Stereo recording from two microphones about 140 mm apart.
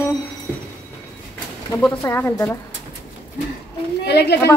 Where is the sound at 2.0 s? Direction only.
20° left (ahead or behind).